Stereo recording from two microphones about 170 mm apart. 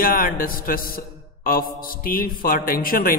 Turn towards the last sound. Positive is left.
turn(degrees=55)  # may be behind; listen again after turning